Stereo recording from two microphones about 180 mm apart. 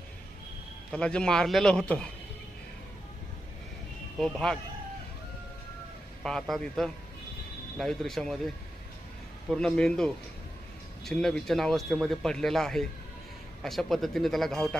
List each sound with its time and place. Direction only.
0.9 s speech: 5° left (ahead or behind)
4.2 s speech: centre (ahead or behind)
6.2 s speech: centre (ahead or behind)
9.5 s speech: 5° left (ahead or behind)